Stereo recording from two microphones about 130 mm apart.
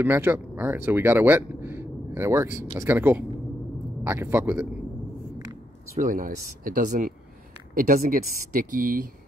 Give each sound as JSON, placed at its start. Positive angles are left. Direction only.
{"t": 0.0, "sound": "speech", "side_deg": -15}
{"t": 5.9, "sound": "speech", "side_deg": -90}